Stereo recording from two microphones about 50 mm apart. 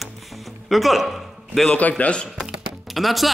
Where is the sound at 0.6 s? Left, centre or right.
Centre.